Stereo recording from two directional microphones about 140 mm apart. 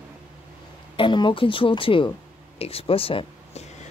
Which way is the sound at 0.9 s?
35° left (ahead or behind).